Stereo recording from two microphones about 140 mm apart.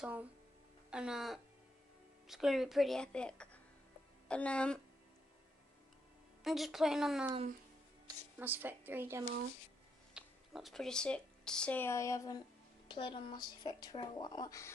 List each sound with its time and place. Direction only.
0.0 s a woman's voice: 10° right (ahead or behind); by 4.8 s 5° left (ahead or behind)
6.4 s speech: centre (ahead or behind)
8.4 s a woman's voice: 15° right (ahead or behind)
10.1 s speech: centre (ahead or behind); by 14.7 s 25° left (ahead or behind)